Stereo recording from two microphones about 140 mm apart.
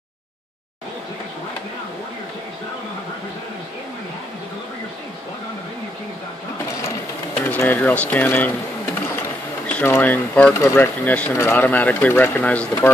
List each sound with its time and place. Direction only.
7.4 s speech: 15° left (ahead or behind)
9.7 s speech: 10° left (ahead or behind)